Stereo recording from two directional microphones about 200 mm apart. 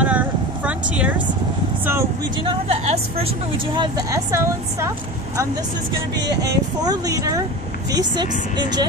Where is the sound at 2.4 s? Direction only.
30° right (ahead or behind); by 4.9 s 15° right (ahead or behind).